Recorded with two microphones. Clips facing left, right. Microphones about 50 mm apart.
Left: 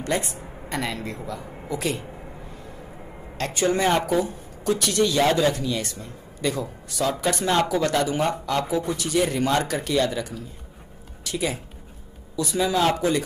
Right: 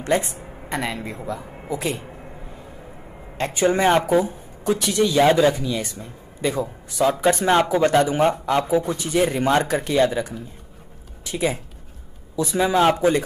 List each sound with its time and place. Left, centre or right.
0.0 s a woman's voice: right
0.3 s a woman's voice: centre
3.3 s speech: centre